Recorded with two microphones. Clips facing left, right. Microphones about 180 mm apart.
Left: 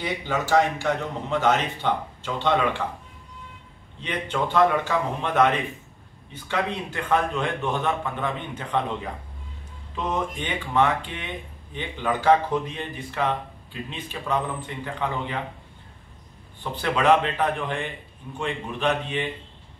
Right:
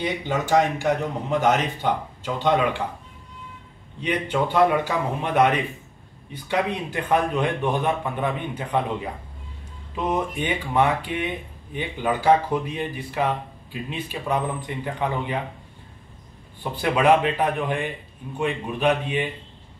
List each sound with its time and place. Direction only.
0.0 s speech: 20° right (ahead or behind)
4.0 s speech: 10° right (ahead or behind)
16.7 s speech: 10° right (ahead or behind)